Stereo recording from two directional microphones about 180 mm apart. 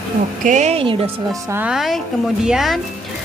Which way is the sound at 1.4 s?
10° right (ahead or behind).